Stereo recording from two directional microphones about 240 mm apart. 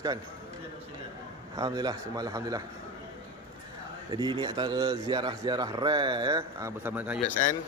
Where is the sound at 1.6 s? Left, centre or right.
Centre.